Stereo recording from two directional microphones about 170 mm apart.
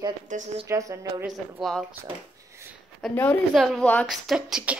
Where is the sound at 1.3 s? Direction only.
Centre (ahead or behind).